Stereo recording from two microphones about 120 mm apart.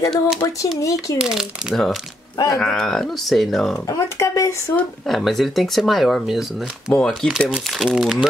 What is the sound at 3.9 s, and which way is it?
Speech, 25° left (ahead or behind).